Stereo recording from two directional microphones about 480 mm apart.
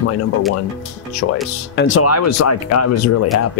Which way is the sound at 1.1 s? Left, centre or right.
Left.